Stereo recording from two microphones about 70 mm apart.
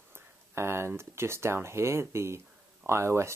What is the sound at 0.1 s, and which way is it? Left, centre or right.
Speech, right.